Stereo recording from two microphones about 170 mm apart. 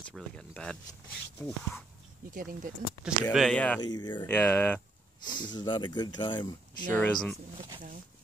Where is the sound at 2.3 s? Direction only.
55° right (ahead or behind).